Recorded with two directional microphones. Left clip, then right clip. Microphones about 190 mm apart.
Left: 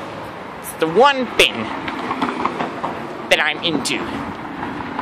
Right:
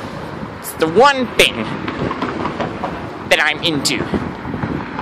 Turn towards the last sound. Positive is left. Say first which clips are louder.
# right 3 dB
turn(degrees=-10)  # may be behind; listen again after turning